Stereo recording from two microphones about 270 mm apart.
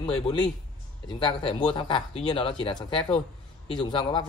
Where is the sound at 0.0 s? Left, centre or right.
Centre.